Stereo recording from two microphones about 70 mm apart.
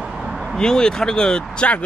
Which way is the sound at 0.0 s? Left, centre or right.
Centre.